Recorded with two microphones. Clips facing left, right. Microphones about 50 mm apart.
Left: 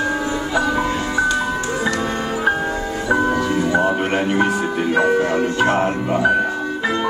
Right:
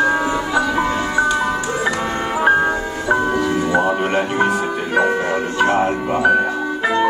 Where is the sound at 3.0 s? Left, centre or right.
Centre.